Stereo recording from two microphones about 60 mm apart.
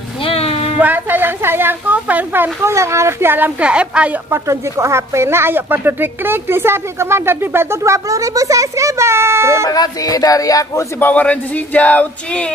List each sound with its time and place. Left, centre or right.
0.7 s a sound: right
2.6 s speech: right
3.3 s a woman's voice: right
3.6 s a woman's voice: centre
4.3 s speech: right
7.8 s a child's voice: right
9.7 s speech: left
11.0 s speech: left